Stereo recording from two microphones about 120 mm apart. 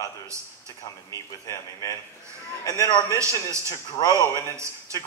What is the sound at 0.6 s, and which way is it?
A man's voice, 30° left (ahead or behind).